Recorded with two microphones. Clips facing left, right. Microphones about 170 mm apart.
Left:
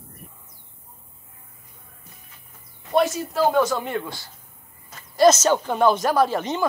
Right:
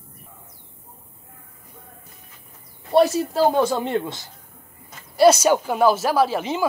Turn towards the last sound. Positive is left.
turn(degrees=-5)  # may be behind; listen again after turning